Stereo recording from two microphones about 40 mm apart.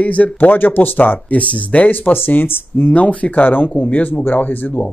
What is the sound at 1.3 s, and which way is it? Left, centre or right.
Speech, left.